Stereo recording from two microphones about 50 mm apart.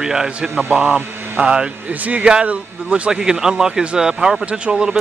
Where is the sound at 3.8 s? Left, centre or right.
Right.